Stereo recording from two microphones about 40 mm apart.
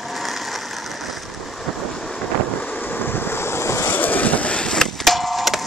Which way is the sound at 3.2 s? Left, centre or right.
Left.